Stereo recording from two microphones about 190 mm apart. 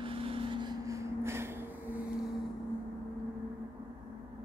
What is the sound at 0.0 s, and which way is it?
Vehicle, 30° right (ahead or behind).